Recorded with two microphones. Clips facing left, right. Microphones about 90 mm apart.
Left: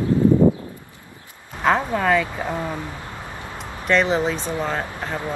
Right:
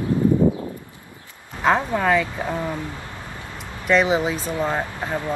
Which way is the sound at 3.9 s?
5° right (ahead or behind).